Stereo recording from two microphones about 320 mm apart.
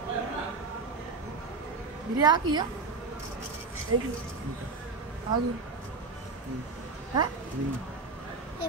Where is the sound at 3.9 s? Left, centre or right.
Right.